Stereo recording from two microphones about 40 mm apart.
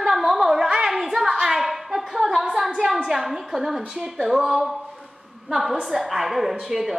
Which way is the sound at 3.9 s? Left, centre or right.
Centre.